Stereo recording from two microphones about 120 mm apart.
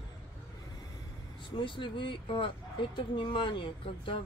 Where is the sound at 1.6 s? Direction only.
45° left (ahead or behind).